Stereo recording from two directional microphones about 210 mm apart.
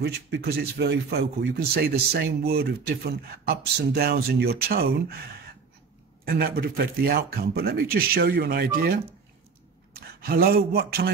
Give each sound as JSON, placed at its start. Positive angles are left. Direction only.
{"t": 0.0, "sound": "speech", "side_deg": -50}
{"t": 6.2, "sound": "speech", "side_deg": -45}
{"t": 9.9, "sound": "speech", "side_deg": -45}